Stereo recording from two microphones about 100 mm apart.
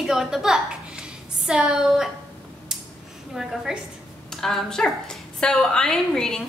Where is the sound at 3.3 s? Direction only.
5° right (ahead or behind).